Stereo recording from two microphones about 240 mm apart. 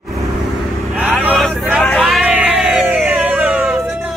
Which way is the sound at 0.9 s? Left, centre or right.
Centre.